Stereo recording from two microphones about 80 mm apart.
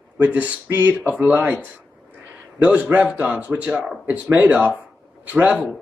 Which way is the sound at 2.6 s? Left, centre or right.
Centre.